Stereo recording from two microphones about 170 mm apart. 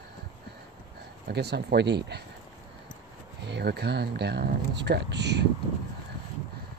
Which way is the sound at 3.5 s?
80° right.